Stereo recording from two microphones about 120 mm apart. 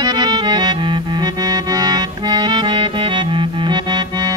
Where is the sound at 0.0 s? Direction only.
35° right (ahead or behind).